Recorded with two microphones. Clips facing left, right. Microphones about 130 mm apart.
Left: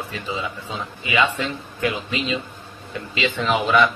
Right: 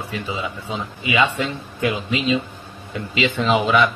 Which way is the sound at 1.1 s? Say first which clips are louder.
Right 1 dB; 15° right (ahead or behind).